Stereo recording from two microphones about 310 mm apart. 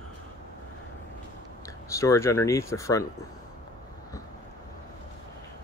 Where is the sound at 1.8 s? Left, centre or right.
Centre.